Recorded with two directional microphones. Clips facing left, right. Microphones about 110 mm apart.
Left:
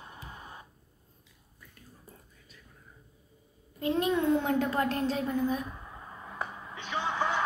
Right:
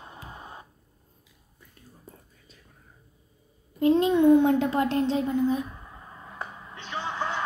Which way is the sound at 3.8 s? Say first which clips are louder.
Right 8 dB; 25° right (ahead or behind).